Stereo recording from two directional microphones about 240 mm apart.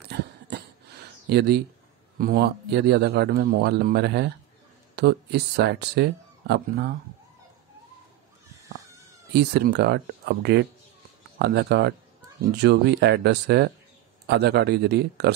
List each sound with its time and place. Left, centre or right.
0.0 s a sound: right
1.3 s a man's voice: right
9.3 s a man's voice: right